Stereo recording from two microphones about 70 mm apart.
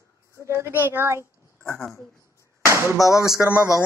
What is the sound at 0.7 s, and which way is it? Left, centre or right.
Speech, right.